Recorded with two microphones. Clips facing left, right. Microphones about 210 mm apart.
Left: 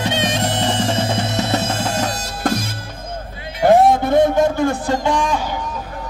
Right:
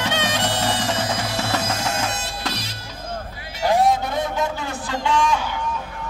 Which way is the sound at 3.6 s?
55° left (ahead or behind).